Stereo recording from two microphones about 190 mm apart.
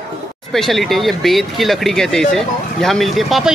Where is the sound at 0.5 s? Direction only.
Centre (ahead or behind).